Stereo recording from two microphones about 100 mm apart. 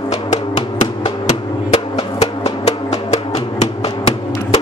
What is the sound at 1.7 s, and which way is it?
Drum, 90° left.